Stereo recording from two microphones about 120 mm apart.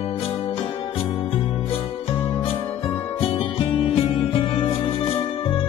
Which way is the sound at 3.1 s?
50° left (ahead or behind).